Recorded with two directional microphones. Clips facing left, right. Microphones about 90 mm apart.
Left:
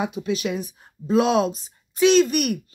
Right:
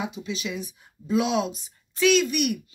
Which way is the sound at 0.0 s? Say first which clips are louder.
Left 6 dB; 55° left (ahead or behind).